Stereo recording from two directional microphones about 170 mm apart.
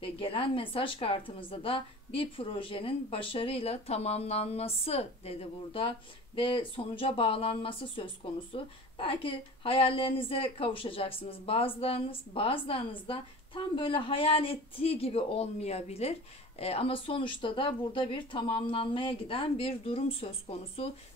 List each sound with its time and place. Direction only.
0.0 s a woman's voice: 30° left (ahead or behind)